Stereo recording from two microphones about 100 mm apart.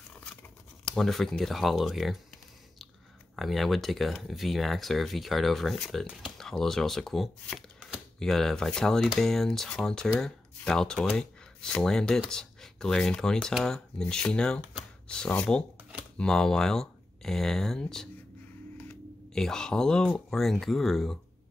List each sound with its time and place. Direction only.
0.2 s scissors: 10° left (ahead or behind)
3.3 s speech: centre (ahead or behind)
19.3 s speech: 5° left (ahead or behind)